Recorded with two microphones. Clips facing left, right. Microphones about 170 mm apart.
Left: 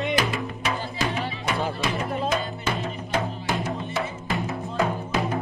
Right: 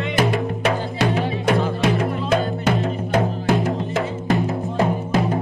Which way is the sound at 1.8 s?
65° right (ahead or behind).